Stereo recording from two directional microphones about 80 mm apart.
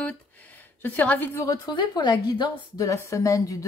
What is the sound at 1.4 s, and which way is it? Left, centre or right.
A woman's voice, left.